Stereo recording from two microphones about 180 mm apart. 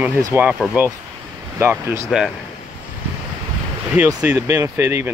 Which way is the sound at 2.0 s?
Centre (ahead or behind).